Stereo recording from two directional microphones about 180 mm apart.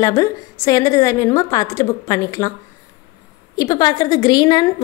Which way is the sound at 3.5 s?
20° left (ahead or behind).